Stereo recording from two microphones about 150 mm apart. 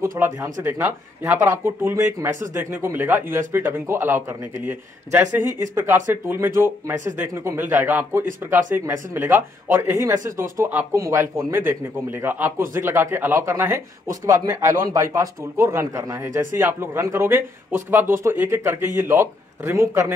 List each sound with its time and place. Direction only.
0.0 s a man's voice: 20° right (ahead or behind)